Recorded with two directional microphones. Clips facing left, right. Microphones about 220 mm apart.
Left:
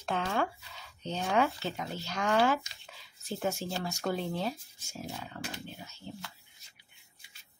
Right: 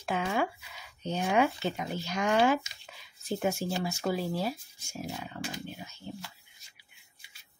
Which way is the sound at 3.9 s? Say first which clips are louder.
Left 1 dB; 5° right (ahead or behind).